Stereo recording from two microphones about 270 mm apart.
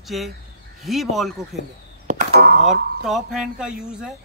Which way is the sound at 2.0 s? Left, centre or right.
Right.